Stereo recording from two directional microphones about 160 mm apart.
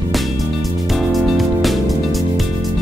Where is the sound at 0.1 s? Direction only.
Centre (ahead or behind).